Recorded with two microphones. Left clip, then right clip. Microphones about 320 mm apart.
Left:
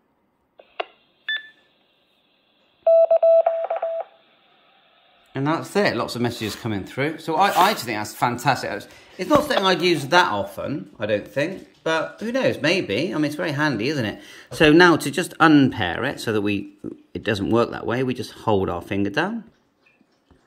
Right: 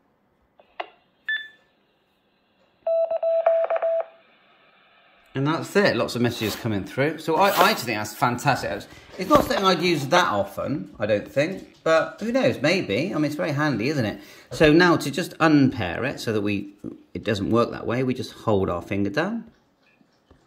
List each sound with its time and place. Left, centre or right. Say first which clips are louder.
0.7 s cash register: left 4 dB; centre
2.8 s telephone dialing: left 8 dB; centre
3.4 s telephone dialing: right 2 dB; centre
5.3 s speech: even; centre